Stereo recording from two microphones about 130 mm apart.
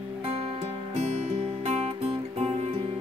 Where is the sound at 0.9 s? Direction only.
55° right (ahead or behind).